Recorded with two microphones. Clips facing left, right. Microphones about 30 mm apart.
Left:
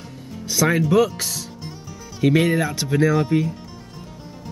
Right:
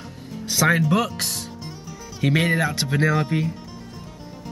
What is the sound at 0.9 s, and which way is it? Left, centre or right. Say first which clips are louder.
Speech: left 4 dB; right.